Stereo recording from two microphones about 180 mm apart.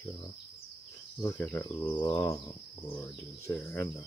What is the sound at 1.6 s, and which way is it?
Speech, 25° left (ahead or behind).